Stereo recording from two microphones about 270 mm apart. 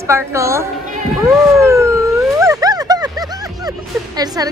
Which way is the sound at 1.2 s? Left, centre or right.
Centre.